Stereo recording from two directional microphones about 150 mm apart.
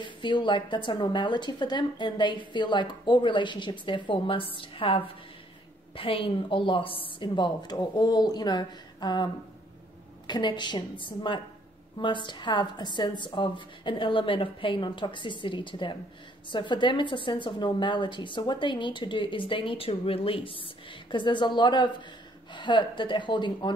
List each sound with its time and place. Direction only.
0.0 s a woman's voice: 30° left (ahead or behind)